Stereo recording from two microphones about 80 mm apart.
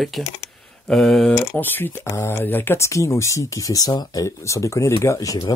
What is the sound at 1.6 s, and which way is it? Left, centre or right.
Speech, left.